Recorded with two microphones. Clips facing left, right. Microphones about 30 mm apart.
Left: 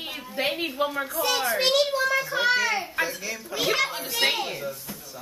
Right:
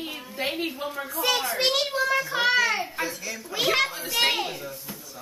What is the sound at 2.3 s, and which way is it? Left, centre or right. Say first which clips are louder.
Speech: right 1 dB; right.